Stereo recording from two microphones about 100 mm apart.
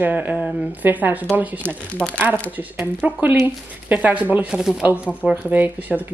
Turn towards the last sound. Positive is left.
turn(degrees=-15)  # may be behind; listen again after turning